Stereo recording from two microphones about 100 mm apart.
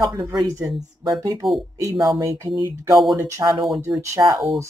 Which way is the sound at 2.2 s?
30° right (ahead or behind).